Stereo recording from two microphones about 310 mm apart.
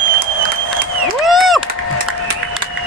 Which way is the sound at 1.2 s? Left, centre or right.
Centre.